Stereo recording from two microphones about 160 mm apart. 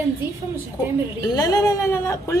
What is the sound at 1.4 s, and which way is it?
Speech, 20° left (ahead or behind).